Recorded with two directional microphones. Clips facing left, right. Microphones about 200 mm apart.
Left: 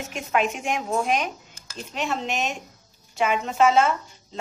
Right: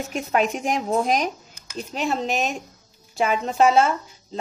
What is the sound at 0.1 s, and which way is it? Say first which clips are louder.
A woman's voice: right 2 dB; 35° right (ahead or behind).